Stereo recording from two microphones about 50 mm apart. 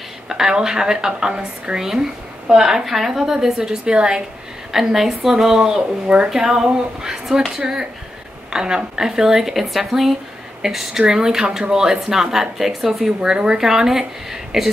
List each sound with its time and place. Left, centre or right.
0.3 s a woman's voice: centre
4.7 s a woman's voice: centre
6.0 s speech: right
6.3 s a woman's voice: centre
8.5 s a woman's voice: centre